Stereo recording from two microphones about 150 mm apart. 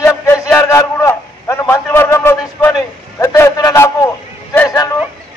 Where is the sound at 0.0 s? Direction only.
20° left (ahead or behind).